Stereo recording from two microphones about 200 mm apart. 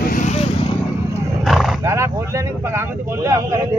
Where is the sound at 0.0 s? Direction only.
40° left (ahead or behind).